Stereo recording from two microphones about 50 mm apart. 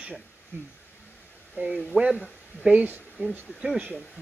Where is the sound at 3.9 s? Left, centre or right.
Centre.